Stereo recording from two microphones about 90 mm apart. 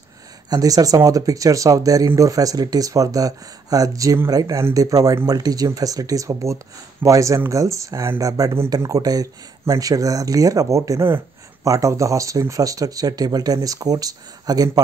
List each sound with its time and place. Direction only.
0.5 s speech: 40° right (ahead or behind)